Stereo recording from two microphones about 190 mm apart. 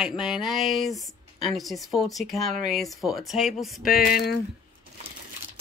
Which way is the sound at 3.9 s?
55° left (ahead or behind).